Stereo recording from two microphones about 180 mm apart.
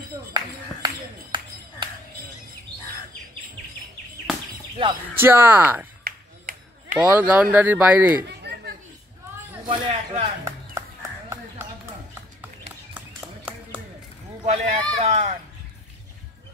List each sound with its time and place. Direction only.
0.8 s a sound: 25° right (ahead or behind)
5.1 s speech: 10° right (ahead or behind)
6.0 s clapping: 50° right (ahead or behind)
7.0 s speech: 10° right (ahead or behind)
8.2 s chatter: 65° right (ahead or behind)
9.7 s speech: 30° right (ahead or behind)
10.4 s a sound: 15° right (ahead or behind)
14.4 s speech: 40° right (ahead or behind)